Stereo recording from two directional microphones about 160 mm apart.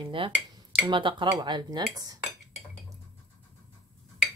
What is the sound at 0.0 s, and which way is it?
Dishes, 35° right (ahead or behind).